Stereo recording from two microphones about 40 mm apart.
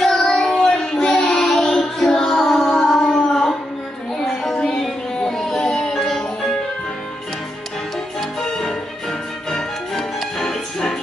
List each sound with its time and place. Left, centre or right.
0.0 s child singing: centre
4.6 s child singing: left
4.8 s music: centre
5.9 s music: centre
8.5 s music: centre